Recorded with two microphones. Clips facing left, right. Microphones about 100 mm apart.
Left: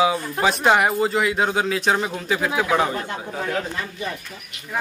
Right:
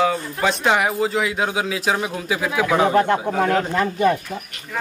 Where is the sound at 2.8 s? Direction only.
65° right (ahead or behind).